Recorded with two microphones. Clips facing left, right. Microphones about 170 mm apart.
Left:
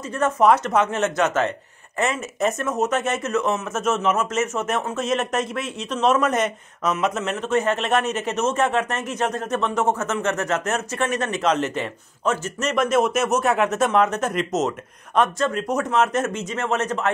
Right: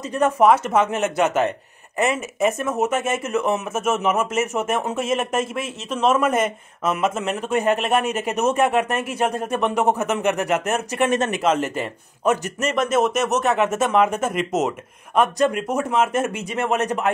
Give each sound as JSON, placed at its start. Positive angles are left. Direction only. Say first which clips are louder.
{"t": 0.1, "sound": "a man's voice", "louder": "right 2 dB", "side_deg": -15}
{"t": 0.5, "sound": "a man's voice", "louder": "right 1 dB", "side_deg": -5}
{"t": 2.8, "sound": "a man's voice", "louder": "even", "side_deg": -5}
{"t": 11.4, "sound": "a man's voice", "louder": "right 1 dB", "side_deg": -5}